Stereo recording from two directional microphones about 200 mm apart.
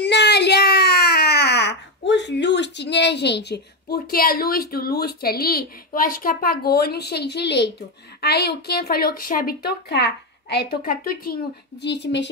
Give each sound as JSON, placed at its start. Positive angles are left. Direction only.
{"t": 0.0, "sound": "a woman's voice", "side_deg": 60}